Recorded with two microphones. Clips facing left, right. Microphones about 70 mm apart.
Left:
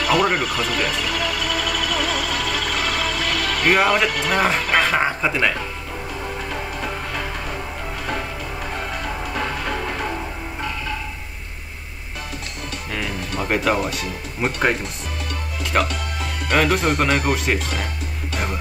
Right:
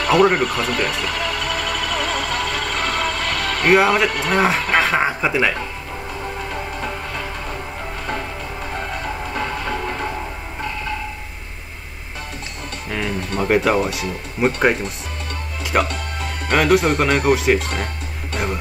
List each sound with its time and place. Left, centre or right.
0.0 s music: right
3.7 s speech: centre
4.1 s speech: right
4.4 s speech: centre
8.7 s music: right
13.4 s speech: centre
15.6 s music: centre
16.5 s speech: centre